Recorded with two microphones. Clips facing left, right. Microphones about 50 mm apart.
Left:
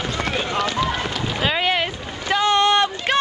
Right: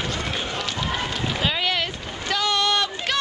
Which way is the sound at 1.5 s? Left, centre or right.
Left.